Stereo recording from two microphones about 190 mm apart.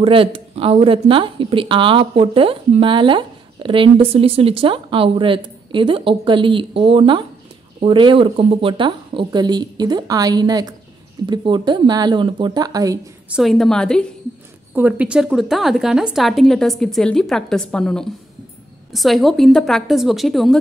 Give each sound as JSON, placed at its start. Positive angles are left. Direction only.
{"t": 0.0, "sound": "speech", "side_deg": -30}
{"t": 13.3, "sound": "a woman's voice", "side_deg": 0}
{"t": 14.8, "sound": "a woman's voice", "side_deg": -10}